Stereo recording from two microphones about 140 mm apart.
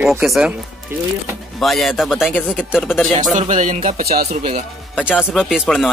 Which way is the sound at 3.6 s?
55° right (ahead or behind).